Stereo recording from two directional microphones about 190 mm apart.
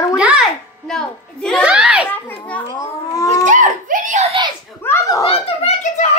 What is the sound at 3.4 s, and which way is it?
Speech, 45° right (ahead or behind).